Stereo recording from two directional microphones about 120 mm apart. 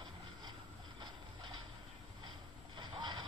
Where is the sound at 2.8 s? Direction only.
40° right (ahead or behind).